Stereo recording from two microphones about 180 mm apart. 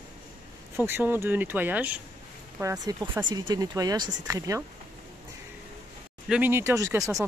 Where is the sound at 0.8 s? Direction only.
10° right (ahead or behind).